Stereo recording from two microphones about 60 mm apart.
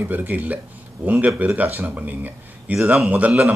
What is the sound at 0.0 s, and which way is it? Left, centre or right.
Speech, right.